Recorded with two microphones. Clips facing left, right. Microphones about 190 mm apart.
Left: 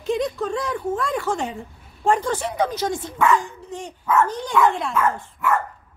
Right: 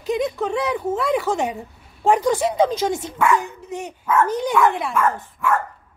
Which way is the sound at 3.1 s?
10° right (ahead or behind).